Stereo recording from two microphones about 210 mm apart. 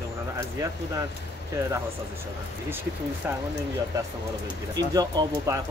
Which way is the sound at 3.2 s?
10° right (ahead or behind).